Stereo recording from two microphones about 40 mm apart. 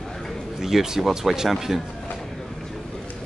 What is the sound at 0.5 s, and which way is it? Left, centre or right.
Speech, centre.